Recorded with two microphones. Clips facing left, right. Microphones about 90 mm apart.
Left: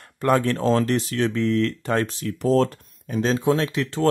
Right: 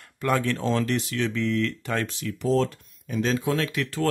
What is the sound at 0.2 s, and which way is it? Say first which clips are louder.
Speech: left 5 dB; 40° left (ahead or behind).